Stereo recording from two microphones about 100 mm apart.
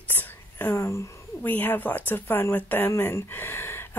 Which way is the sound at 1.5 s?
20° left (ahead or behind).